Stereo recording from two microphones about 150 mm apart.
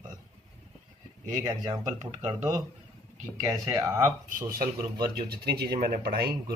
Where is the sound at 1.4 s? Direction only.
25° right (ahead or behind).